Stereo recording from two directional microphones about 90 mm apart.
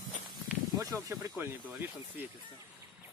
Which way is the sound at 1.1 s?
25° right (ahead or behind).